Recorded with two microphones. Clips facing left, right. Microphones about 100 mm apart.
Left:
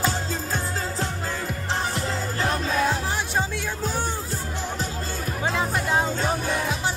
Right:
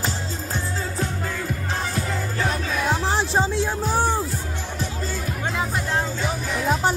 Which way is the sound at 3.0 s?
30° right (ahead or behind).